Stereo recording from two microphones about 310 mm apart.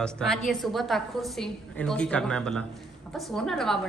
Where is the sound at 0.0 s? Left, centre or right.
Centre.